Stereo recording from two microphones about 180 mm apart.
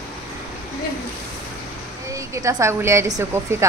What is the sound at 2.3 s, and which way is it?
Speech, 15° right (ahead or behind).